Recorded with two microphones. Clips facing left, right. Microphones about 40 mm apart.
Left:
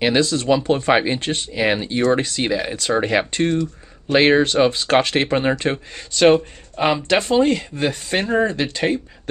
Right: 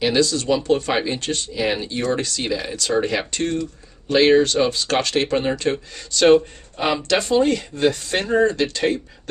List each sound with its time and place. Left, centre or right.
0.0 s speech: left